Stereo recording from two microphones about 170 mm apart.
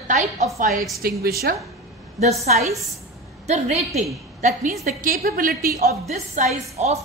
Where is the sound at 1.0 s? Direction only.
60° right (ahead or behind).